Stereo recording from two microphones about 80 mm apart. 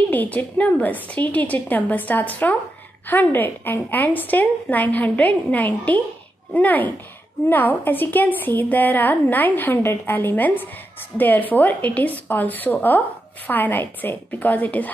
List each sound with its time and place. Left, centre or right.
0.1 s a woman's voice: left